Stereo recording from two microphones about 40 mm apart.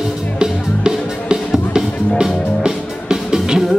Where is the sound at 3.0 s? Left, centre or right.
Centre.